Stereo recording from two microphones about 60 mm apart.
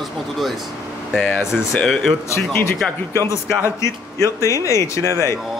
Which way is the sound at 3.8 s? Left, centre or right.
Left.